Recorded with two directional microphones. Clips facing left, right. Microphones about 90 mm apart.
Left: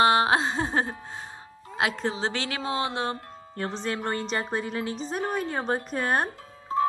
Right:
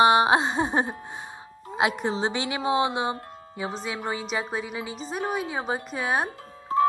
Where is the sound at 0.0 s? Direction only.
20° right (ahead or behind).